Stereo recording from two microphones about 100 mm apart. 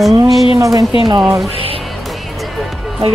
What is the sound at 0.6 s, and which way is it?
Speech, 35° right (ahead or behind).